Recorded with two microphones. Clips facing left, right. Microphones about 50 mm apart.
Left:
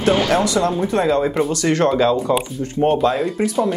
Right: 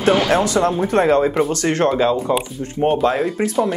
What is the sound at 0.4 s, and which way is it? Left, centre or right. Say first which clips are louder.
Speech: right 1 dB; right.